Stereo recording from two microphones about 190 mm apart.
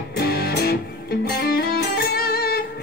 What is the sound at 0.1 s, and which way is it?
Music, 55° left (ahead or behind).